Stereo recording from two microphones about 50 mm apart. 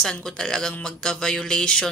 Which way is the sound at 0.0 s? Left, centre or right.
Centre.